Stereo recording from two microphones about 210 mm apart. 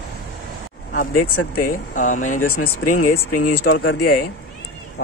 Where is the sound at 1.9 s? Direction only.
35° left (ahead or behind).